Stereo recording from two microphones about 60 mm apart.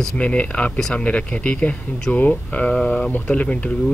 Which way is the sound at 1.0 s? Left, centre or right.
Left.